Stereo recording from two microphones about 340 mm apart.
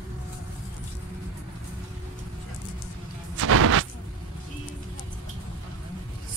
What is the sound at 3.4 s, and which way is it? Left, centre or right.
Gunshot, right.